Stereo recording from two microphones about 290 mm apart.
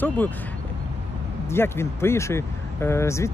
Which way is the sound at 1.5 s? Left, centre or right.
Centre.